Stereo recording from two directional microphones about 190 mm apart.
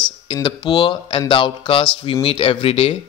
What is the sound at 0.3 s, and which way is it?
A man's voice, 25° left (ahead or behind).